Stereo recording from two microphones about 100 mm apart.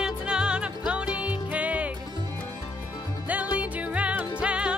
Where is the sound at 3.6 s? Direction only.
15° right (ahead or behind).